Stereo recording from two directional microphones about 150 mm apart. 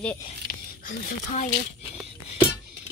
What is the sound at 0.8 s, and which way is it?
Speech, 65° left (ahead or behind).